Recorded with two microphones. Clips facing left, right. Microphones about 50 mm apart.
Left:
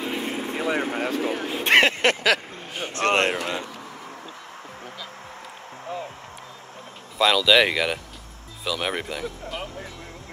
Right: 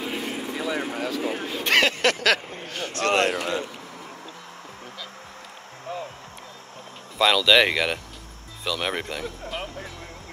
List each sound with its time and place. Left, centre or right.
0.0 s speech: left
5.9 s a sound: centre
7.2 s speech: centre